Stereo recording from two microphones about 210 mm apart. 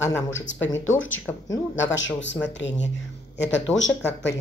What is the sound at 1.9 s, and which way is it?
Speech, 60° left (ahead or behind).